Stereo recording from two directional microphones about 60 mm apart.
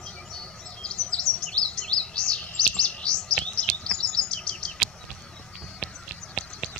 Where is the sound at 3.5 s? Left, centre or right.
Centre.